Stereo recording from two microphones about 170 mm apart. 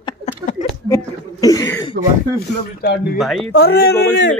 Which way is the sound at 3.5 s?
70° left (ahead or behind).